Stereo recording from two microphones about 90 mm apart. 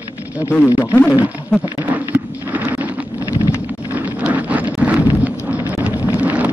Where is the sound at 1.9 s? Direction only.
15° right (ahead or behind).